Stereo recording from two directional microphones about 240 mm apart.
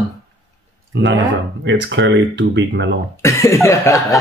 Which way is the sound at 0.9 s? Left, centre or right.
Right.